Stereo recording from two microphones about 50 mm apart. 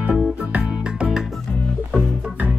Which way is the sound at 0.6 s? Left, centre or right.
Centre.